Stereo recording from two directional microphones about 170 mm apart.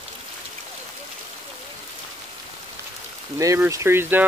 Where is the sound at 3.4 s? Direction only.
20° right (ahead or behind).